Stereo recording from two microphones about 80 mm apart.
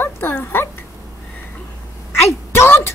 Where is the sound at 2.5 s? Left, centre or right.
Left.